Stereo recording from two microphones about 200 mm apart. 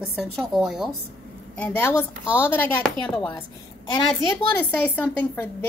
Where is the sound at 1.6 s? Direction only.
10° left (ahead or behind).